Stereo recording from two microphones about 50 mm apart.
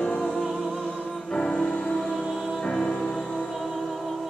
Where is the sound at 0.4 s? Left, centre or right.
Centre.